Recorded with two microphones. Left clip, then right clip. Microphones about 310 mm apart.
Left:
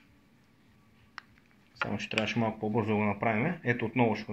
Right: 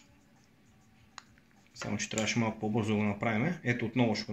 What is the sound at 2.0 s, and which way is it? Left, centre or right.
Speech, right.